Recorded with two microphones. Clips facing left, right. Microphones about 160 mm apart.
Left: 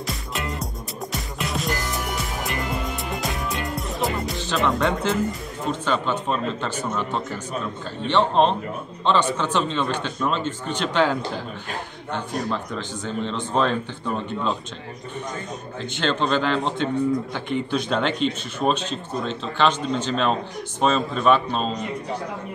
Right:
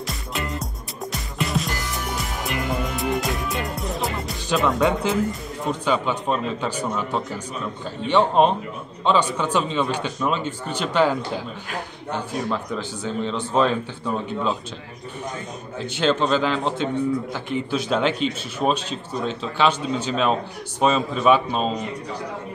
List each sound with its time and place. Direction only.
0.0 s music: centre (ahead or behind)
3.0 s music: centre (ahead or behind)
4.6 s a man's voice: 5° right (ahead or behind)
12.4 s a man's voice: 5° right (ahead or behind)
16.0 s a man's voice: 5° right (ahead or behind)